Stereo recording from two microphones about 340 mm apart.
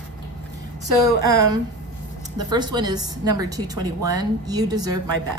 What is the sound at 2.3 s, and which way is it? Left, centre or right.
A woman's voice, centre.